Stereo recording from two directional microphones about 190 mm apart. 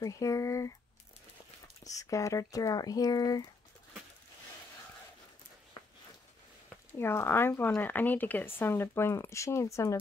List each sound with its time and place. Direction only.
0.0 s speech: 15° left (ahead or behind)
1.9 s speech: 15° left (ahead or behind)
7.0 s speech: 10° left (ahead or behind)